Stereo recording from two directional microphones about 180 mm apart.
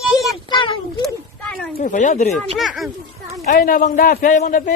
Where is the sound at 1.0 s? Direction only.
5° left (ahead or behind).